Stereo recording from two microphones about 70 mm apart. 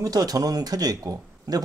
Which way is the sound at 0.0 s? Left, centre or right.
Right.